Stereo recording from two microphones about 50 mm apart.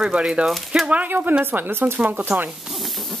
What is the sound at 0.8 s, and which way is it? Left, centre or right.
A woman's voice, right.